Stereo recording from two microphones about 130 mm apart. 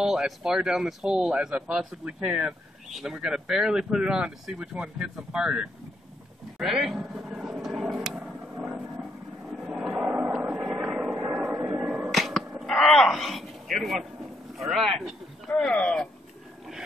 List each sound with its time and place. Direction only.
0.0 s speech: 5° right (ahead or behind)
6.6 s vehicle: centre (ahead or behind)
8.5 s vehicle: 15° right (ahead or behind)
9.7 s a sound: 5° right (ahead or behind)
10.7 s vehicle: 5° right (ahead or behind)
11.5 s a sound: 10° right (ahead or behind)
14.5 s speech: centre (ahead or behind)